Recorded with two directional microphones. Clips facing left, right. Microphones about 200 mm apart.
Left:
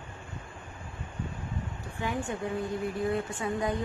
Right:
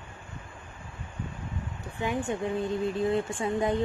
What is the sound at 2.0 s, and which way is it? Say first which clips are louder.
Speech: right 3 dB; 25° right (ahead or behind).